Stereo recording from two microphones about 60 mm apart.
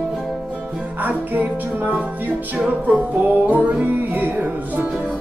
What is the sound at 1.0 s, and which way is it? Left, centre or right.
Music, right.